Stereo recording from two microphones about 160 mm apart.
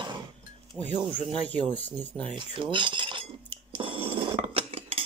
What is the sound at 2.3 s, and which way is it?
Cutlery, 30° right (ahead or behind).